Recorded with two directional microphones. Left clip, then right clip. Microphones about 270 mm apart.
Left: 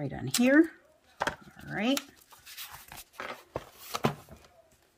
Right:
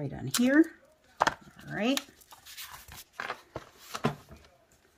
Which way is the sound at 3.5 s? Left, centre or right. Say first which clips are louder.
Left 4 dB; left.